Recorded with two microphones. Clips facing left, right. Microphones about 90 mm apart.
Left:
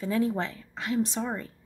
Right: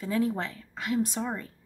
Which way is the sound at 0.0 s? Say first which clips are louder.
Left 1 dB; 20° left (ahead or behind).